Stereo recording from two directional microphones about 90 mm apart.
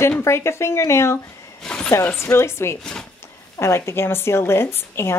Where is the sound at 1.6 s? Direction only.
10° left (ahead or behind).